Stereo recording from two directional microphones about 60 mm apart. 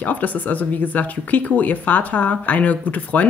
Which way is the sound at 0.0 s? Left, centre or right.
Left.